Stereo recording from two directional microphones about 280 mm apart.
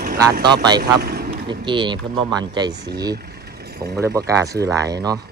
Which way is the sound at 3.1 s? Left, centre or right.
Right.